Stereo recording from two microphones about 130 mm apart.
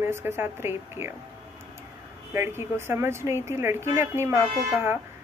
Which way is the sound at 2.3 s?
20° right (ahead or behind).